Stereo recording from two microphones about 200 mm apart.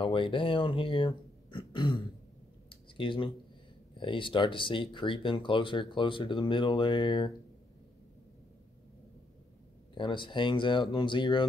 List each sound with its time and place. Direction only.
0.0 s speech: 25° left (ahead or behind)
2.7 s a sound: 25° left (ahead or behind)
4.0 s speech: 25° left (ahead or behind)
9.9 s speech: 25° left (ahead or behind)